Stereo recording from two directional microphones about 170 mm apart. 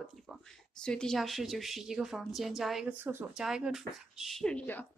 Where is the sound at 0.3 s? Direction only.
5° left (ahead or behind).